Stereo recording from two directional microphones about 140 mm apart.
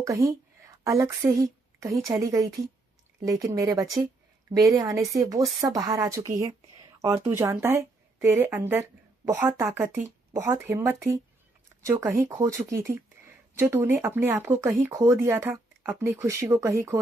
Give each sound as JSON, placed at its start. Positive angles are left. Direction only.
{"t": 0.0, "sound": "speech", "side_deg": -20}